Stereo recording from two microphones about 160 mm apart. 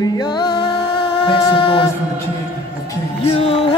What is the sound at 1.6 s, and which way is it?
A capella, 35° left (ahead or behind).